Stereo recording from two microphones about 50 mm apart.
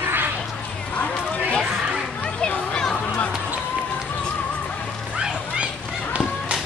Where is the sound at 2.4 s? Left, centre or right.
Centre.